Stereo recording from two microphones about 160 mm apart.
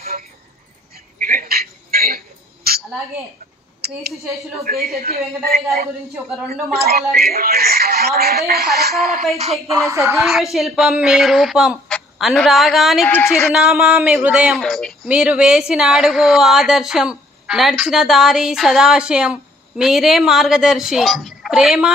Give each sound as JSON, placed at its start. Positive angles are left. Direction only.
{"t": 0.9, "sound": "a sound", "side_deg": -60}
{"t": 4.6, "sound": "a woman's voice", "side_deg": -70}
{"t": 9.7, "sound": "speech", "side_deg": -20}
{"t": 10.5, "sound": "speech", "side_deg": 0}
{"t": 13.1, "sound": "a woman's voice", "side_deg": 15}
{"t": 13.5, "sound": "speech", "side_deg": -5}
{"t": 15.0, "sound": "speech", "side_deg": -10}